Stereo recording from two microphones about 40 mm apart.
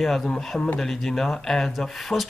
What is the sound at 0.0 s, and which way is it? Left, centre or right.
Speech, centre.